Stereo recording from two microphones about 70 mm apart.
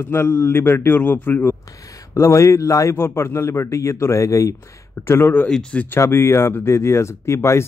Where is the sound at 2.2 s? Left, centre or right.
Left.